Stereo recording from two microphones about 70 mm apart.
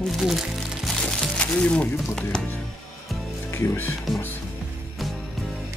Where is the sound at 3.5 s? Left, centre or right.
Left.